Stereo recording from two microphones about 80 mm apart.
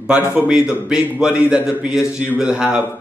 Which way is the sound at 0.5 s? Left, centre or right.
Centre.